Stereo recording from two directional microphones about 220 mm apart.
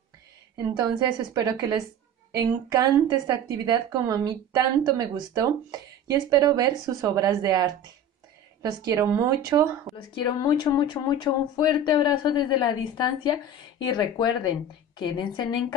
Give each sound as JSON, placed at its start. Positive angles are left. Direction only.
{"t": 0.6, "sound": "a woman's voice", "side_deg": -15}
{"t": 10.1, "sound": "speech", "side_deg": 20}